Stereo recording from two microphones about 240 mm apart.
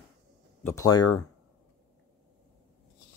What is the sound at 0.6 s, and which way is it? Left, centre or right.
Speech, centre.